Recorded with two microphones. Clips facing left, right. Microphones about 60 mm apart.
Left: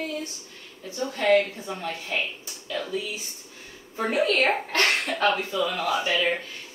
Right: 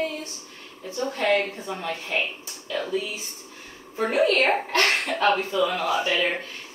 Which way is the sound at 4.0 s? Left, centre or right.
Right.